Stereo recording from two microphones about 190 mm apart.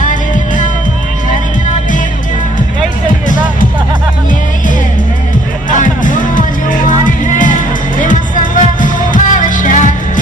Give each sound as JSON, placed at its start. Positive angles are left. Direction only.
{"t": 0.0, "sound": "music", "side_deg": 40}
{"t": 5.8, "sound": "music", "side_deg": 45}